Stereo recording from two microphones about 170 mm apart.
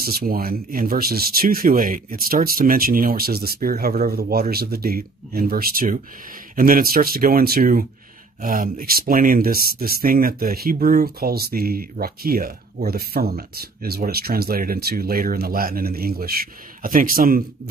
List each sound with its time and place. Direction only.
0.0 s speech: 60° right (ahead or behind)